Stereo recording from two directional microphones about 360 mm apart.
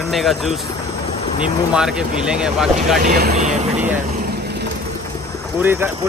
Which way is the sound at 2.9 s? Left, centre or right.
Right.